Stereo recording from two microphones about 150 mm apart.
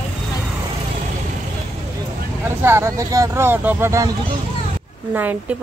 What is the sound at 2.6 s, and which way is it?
A woman's voice, 20° right (ahead or behind).